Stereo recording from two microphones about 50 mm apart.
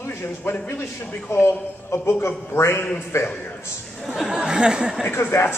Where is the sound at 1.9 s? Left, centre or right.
Left.